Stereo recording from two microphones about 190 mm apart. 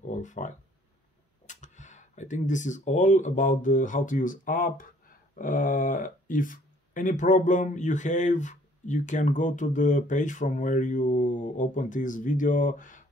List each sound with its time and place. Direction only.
0.0 s speech: 40° left (ahead or behind)